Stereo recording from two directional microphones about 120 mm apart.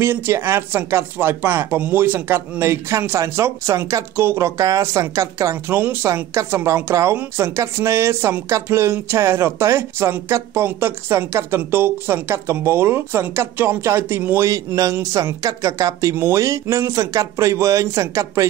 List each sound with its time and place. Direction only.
0.0 s speech: 20° right (ahead or behind)